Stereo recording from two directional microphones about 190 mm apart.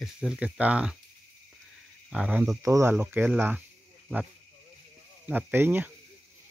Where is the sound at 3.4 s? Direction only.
10° right (ahead or behind).